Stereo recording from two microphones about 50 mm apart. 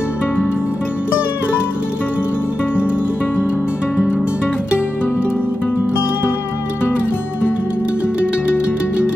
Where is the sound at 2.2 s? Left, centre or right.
Left.